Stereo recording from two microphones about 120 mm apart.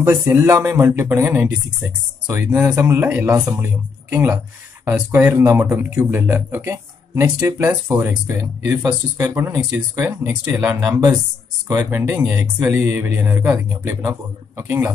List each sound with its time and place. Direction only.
0.0 s speech: 20° right (ahead or behind)
9.2 s speech: 25° right (ahead or behind)
10.9 s speech: 30° right (ahead or behind)
11.8 s speech: 20° right (ahead or behind)